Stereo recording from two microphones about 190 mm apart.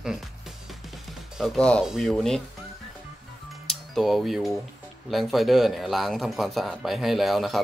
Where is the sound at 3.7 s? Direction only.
Centre (ahead or behind).